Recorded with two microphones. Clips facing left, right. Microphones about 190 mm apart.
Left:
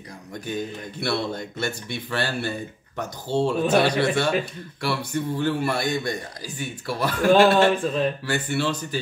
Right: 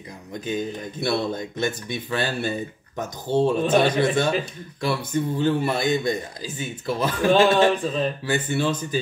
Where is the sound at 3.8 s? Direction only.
20° right (ahead or behind).